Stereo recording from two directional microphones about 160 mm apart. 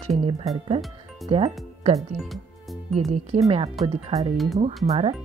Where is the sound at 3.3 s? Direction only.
45° right (ahead or behind).